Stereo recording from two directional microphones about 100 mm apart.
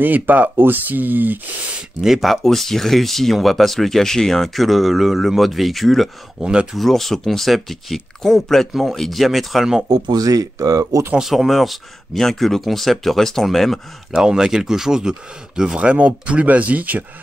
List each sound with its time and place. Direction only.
0.0 s speech: 15° right (ahead or behind)
2.0 s speech: centre (ahead or behind)
9.8 s speech: 40° right (ahead or behind)
11.1 s speech: centre (ahead or behind)